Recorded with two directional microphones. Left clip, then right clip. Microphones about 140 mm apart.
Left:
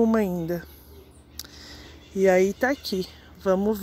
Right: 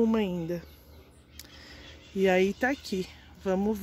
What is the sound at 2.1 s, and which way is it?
A woman's voice, 30° right (ahead or behind).